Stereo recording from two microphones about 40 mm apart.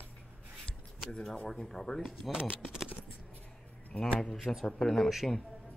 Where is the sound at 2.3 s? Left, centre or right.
Right.